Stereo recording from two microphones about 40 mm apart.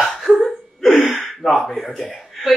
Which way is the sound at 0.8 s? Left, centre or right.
Centre.